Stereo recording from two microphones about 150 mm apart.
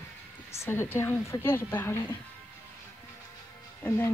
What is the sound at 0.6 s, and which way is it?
A woman's voice, 15° left (ahead or behind).